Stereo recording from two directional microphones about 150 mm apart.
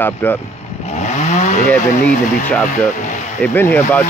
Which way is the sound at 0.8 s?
50° left (ahead or behind).